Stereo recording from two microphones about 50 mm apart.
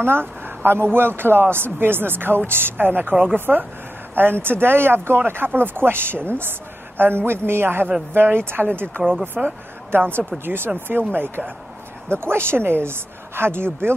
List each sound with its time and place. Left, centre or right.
0.0 s speech: right
12.1 s speech: right